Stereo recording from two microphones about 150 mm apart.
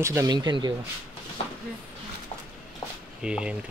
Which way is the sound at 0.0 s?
20° right (ahead or behind).